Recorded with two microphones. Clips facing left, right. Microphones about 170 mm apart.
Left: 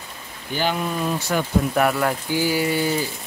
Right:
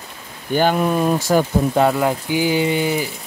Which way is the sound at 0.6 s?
50° right (ahead or behind).